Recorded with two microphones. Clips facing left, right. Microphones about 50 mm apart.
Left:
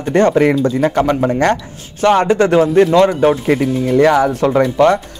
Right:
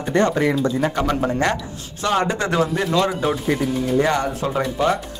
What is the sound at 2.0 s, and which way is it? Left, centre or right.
Speech, left.